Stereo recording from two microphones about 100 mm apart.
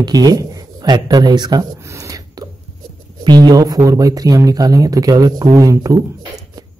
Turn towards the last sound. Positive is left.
turn(degrees=-35)  # may be behind; listen again after turning